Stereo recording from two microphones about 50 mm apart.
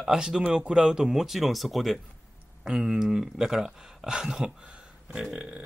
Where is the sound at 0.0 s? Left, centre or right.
Centre.